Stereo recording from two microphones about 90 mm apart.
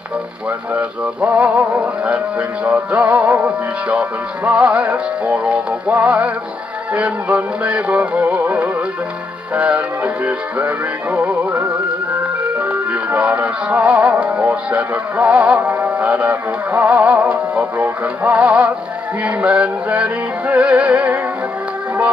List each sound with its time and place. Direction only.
0.5 s music: 15° right (ahead or behind)